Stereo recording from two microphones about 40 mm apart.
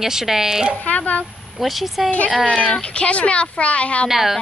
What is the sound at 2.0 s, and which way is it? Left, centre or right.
A woman's voice, left.